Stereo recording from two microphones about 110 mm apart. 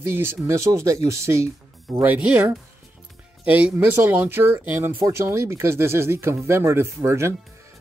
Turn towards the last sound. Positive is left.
turn(degrees=-25)  # may be behind; listen again after turning